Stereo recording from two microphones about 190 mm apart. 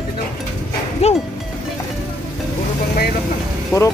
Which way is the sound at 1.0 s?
35° left (ahead or behind).